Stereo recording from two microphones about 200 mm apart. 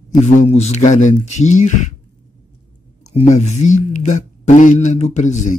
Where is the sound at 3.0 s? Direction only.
35° left (ahead or behind).